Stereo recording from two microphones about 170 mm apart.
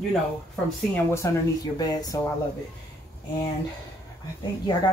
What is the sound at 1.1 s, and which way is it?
Speech, 20° left (ahead or behind).